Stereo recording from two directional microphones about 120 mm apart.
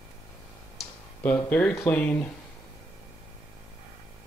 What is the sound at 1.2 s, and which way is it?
Speech, 15° left (ahead or behind).